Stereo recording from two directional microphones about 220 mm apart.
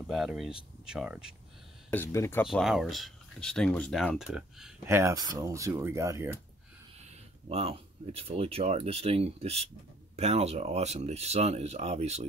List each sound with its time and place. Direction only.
0.1 s speech: centre (ahead or behind)
1.9 s speech: 10° left (ahead or behind)
2.4 s speech: centre (ahead or behind)
7.4 s speech: 25° right (ahead or behind)